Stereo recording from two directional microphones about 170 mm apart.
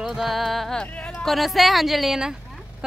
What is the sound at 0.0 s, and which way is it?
Speech, centre (ahead or behind).